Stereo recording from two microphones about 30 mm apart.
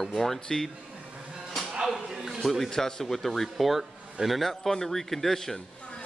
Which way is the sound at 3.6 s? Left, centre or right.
Centre.